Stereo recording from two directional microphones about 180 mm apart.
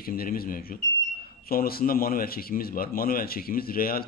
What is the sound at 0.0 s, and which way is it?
A man's voice, 55° left (ahead or behind).